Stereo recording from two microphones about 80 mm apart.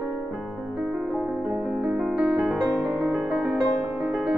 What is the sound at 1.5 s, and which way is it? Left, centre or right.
Music, centre.